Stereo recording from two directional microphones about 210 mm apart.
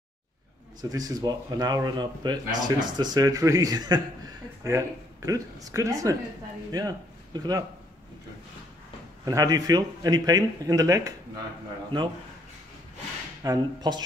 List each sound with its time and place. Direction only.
0.8 s a man's voice: 15° right (ahead or behind)
9.2 s a man's voice: 15° right (ahead or behind)
13.4 s a man's voice: 15° right (ahead or behind)